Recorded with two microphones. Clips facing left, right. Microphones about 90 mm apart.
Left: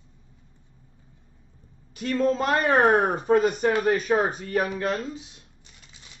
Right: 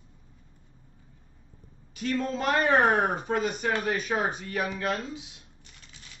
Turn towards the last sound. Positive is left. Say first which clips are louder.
# left 3 dB
turn(degrees=35)  # may be behind; listen again after turning